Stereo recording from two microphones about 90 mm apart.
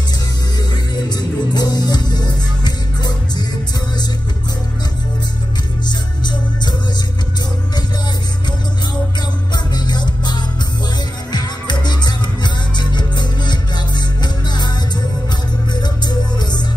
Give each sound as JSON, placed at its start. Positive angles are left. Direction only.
{"t": 0.9, "sound": "music", "side_deg": 50}
{"t": 5.9, "sound": "music", "side_deg": 55}
{"t": 9.5, "sound": "music", "side_deg": 55}
{"t": 15.7, "sound": "music", "side_deg": 50}